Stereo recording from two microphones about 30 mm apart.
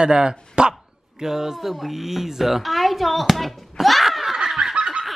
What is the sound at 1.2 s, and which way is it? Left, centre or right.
A woman's voice, centre.